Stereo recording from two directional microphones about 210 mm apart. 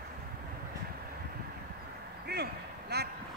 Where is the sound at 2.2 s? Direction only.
50° right (ahead or behind).